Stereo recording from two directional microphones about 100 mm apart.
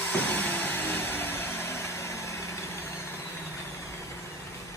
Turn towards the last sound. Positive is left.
turn(degrees=30)  # may be behind; listen again after turning